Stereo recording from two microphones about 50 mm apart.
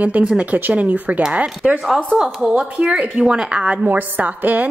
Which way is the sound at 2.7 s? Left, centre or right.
Right.